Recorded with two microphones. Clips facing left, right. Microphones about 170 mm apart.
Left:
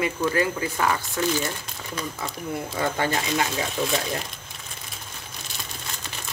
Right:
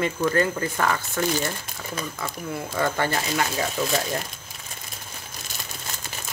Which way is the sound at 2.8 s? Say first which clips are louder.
Right 1 dB; 15° left (ahead or behind).